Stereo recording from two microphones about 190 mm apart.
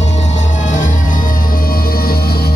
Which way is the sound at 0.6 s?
40° left (ahead or behind).